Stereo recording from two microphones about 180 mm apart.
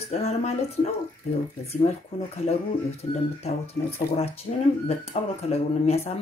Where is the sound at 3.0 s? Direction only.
35° left (ahead or behind).